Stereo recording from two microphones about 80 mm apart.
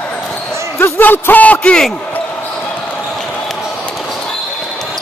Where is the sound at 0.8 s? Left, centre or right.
Left.